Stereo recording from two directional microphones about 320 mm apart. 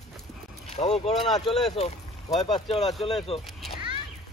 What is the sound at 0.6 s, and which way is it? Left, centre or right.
Vehicle, left.